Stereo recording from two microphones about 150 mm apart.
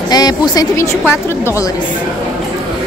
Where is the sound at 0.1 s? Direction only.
25° left (ahead or behind).